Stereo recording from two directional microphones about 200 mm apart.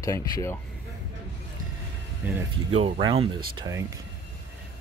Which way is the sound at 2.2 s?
10° right (ahead or behind).